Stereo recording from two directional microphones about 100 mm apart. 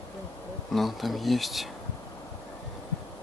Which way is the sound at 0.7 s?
Centre (ahead or behind).